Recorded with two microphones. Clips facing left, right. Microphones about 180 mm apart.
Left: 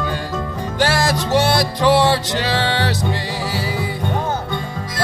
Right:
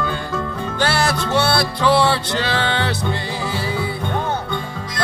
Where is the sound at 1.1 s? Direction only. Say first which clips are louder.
Left 2 dB; 15° left (ahead or behind).